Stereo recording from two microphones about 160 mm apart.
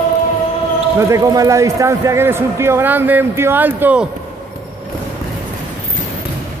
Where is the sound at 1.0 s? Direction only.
20° right (ahead or behind).